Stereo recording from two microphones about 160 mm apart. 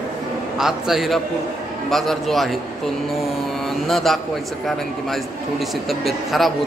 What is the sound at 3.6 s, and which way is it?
A man's voice, centre (ahead or behind).